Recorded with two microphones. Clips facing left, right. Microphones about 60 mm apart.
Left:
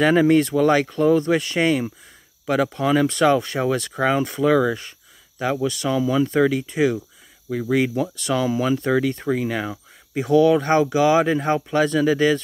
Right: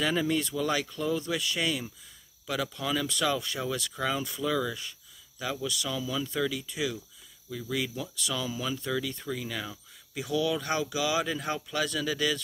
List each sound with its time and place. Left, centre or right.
0.0 s speech: left